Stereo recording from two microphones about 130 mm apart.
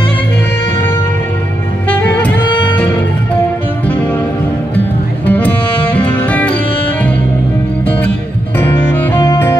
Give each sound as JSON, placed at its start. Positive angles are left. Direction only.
{"t": 1.9, "sound": "music", "side_deg": 10}
{"t": 3.8, "sound": "music", "side_deg": 10}
{"t": 8.5, "sound": "music", "side_deg": 15}